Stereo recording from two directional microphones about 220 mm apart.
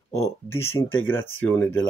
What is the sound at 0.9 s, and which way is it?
Speech, 65° left (ahead or behind).